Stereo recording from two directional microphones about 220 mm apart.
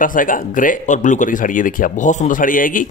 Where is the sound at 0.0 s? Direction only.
40° left (ahead or behind).